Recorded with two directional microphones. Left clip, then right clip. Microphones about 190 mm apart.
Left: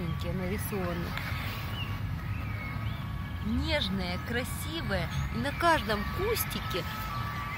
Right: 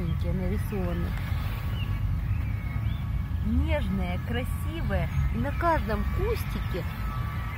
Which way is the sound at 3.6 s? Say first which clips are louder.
Left 2 dB; 5° left (ahead or behind).